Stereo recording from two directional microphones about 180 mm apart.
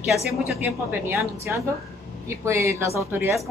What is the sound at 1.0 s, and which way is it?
Speech, 15° right (ahead or behind).